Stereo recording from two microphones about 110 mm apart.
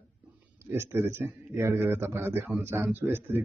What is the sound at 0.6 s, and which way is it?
A man's voice, 20° right (ahead or behind).